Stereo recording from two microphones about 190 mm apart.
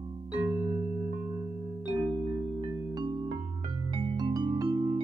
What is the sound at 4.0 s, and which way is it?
Music, 30° right (ahead or behind).